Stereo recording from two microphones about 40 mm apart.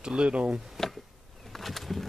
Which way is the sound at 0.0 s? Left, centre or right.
Right.